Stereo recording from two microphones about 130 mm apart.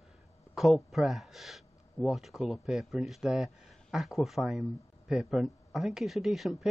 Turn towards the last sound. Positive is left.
turn(degrees=0)  # may be behind; listen again after turning